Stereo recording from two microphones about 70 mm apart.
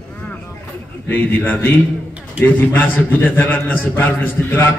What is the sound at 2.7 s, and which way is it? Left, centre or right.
A man's voice, left.